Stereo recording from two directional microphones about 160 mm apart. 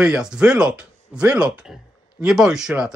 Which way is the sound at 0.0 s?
5° right (ahead or behind).